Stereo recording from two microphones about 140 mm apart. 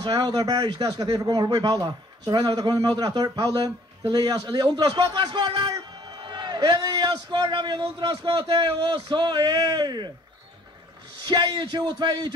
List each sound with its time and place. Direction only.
0.0 s a man's voice: 30° right (ahead or behind)
11.1 s a man's voice: 30° right (ahead or behind)